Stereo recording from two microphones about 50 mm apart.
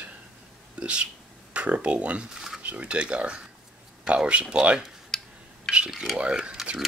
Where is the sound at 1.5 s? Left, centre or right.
Right.